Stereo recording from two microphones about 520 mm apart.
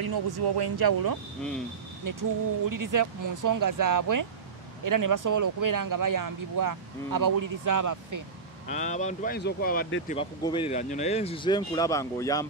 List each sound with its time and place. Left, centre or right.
0.0 s speech: right
8.6 s speech: centre